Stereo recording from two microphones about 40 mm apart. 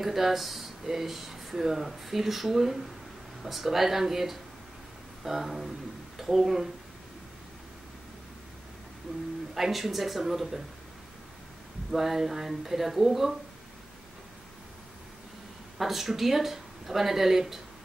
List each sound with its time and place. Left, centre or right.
0.0 s speech: centre
9.5 s speech: centre
11.9 s speech: centre
15.8 s speech: centre